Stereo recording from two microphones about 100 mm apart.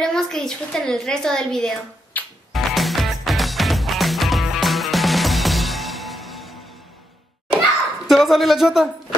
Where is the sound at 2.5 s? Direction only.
Centre (ahead or behind).